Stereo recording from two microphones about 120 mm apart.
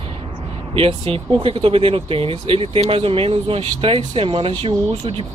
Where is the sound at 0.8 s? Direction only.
50° right (ahead or behind).